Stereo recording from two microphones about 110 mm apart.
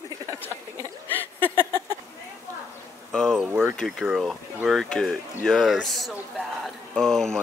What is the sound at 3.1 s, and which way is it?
Speech, 5° left (ahead or behind).